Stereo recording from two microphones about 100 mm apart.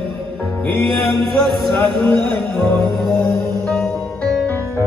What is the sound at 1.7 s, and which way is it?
Speech, 50° right (ahead or behind).